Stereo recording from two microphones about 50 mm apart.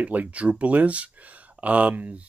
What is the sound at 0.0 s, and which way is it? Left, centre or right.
Speech, right.